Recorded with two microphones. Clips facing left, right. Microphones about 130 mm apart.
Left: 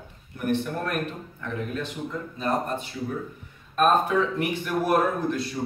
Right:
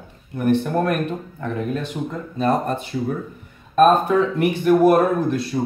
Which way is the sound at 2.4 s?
75° right (ahead or behind).